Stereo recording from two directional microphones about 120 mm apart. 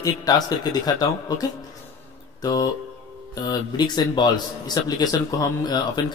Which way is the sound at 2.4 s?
30° left (ahead or behind).